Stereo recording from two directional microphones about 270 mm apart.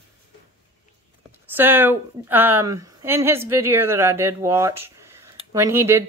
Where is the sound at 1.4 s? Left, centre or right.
Centre.